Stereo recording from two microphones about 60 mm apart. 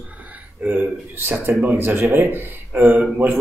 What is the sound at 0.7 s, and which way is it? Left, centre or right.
A man's voice, right.